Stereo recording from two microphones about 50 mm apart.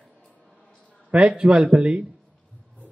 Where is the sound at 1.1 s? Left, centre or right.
Right.